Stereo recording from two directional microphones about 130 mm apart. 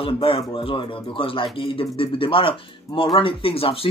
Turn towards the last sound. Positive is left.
turn(degrees=45)  # may be behind; listen again after turning